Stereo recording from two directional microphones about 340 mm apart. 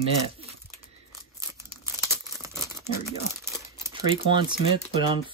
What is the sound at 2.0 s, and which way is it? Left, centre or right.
Crumpling, centre.